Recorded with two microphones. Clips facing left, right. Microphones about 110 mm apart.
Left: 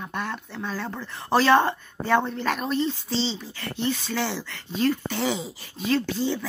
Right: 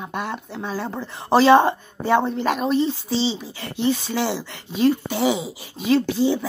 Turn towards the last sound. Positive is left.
turn(degrees=-15)  # may be behind; listen again after turning